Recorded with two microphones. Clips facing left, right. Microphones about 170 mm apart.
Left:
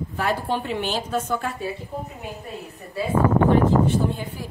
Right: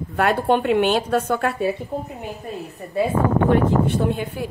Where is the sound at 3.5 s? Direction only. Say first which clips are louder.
Even; 65° right (ahead or behind).